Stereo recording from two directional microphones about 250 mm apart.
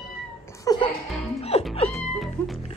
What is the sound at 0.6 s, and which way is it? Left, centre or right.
Music, centre.